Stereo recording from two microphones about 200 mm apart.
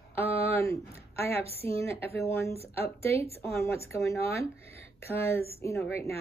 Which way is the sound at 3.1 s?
30° right (ahead or behind).